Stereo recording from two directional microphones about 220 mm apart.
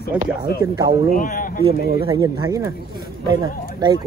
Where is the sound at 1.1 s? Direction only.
35° left (ahead or behind).